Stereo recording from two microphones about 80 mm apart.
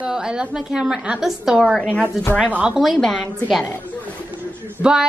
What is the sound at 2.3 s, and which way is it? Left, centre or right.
Speech, centre.